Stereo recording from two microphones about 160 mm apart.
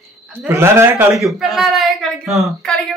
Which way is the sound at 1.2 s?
Centre (ahead or behind).